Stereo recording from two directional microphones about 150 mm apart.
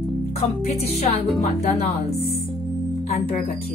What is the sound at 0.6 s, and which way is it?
Music, 45° left (ahead or behind).